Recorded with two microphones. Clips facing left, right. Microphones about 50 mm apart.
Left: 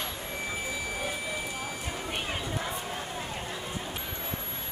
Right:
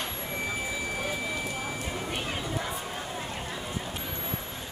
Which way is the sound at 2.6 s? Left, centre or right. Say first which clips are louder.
Even; centre.